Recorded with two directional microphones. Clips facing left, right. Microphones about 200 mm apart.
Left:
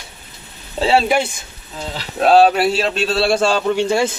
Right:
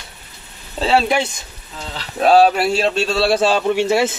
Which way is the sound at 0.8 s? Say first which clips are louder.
Left 1 dB; 10° left (ahead or behind).